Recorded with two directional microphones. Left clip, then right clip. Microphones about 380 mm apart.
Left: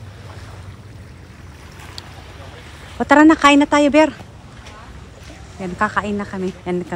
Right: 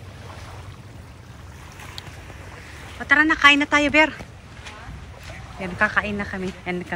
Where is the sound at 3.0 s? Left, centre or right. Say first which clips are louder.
Left 5 dB; centre.